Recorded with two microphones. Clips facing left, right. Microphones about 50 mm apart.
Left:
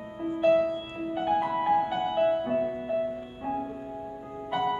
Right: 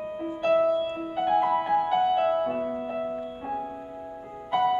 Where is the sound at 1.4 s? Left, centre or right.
Centre.